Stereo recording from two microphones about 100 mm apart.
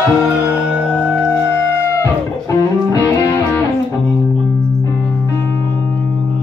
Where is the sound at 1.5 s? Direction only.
30° left (ahead or behind).